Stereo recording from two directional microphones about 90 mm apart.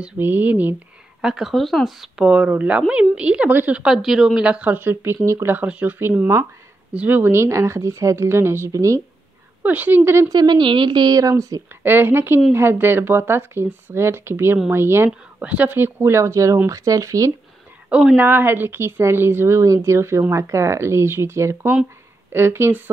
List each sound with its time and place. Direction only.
0.2 s a woman's voice: 20° right (ahead or behind)
1.2 s speech: 5° right (ahead or behind)
2.2 s a woman's voice: 10° right (ahead or behind)
5.7 s a woman's voice: 15° right (ahead or behind)
5.9 s a woman's voice: 25° right (ahead or behind)
6.9 s speech: 15° right (ahead or behind); by 9.0 s 35° right (ahead or behind)
9.6 s a woman's voice: 20° right (ahead or behind)
10.3 s a woman's voice: 50° right (ahead or behind)
11.8 s a woman's voice: 25° right (ahead or behind)
17.8 s a woman's voice: 15° right (ahead or behind)